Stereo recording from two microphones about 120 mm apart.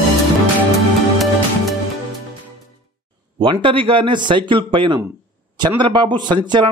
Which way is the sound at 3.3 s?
45° right (ahead or behind).